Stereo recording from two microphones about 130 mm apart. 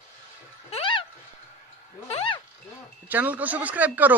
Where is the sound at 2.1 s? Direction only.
45° left (ahead or behind).